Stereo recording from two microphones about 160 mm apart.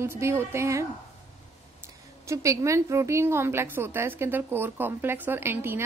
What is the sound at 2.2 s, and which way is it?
A woman's voice, 20° right (ahead or behind).